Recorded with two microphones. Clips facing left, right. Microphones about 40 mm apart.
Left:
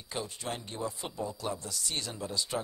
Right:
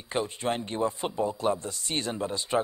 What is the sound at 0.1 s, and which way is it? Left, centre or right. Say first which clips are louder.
A man's voice: right 8 dB; right.